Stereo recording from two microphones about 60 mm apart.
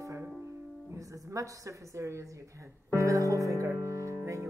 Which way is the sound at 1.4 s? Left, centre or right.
Right.